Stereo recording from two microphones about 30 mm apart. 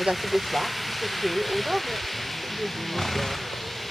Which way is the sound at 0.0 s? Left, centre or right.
Centre.